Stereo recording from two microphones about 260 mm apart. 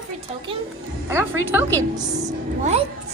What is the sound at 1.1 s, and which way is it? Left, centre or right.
Speech, centre.